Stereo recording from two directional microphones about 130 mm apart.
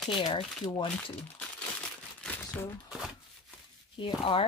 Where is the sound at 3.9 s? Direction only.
40° left (ahead or behind).